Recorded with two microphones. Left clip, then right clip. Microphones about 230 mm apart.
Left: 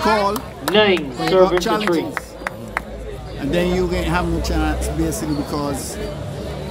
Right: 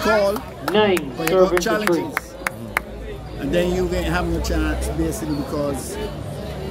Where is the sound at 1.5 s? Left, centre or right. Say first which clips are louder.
Left 1 dB; centre.